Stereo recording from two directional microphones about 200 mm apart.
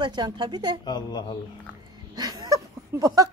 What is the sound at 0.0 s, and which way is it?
Speech, 20° right (ahead or behind).